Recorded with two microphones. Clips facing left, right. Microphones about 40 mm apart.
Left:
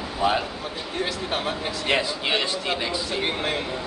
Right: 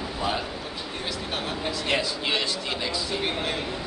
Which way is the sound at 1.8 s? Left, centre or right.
Left.